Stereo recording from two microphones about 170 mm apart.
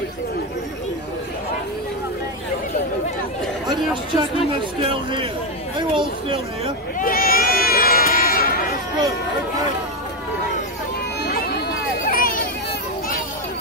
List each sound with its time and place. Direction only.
4.1 s speech: 30° right (ahead or behind)
5.8 s a sound: 30° right (ahead or behind)
7.0 s baby cry: 60° left (ahead or behind)
11.2 s chatter: 70° left (ahead or behind)